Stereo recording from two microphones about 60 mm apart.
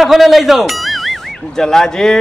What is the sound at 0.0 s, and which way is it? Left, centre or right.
A man's voice, centre.